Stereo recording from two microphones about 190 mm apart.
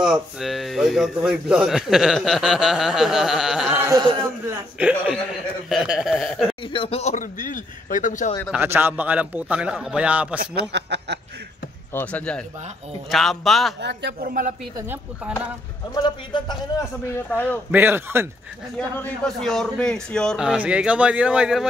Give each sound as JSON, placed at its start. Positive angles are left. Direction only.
{"t": 0.0, "sound": "a man's voice", "side_deg": 0}
{"t": 6.6, "sound": "speech", "side_deg": 30}
{"t": 8.5, "sound": "a man's voice", "side_deg": -10}
{"t": 10.4, "sound": "a man's voice", "side_deg": -60}
{"t": 11.9, "sound": "a man's voice", "side_deg": 10}
{"t": 13.7, "sound": "a man's voice", "side_deg": -65}
{"t": 15.9, "sound": "a man's voice", "side_deg": 25}
{"t": 17.6, "sound": "a man's voice", "side_deg": -10}
{"t": 18.8, "sound": "a man's voice", "side_deg": 5}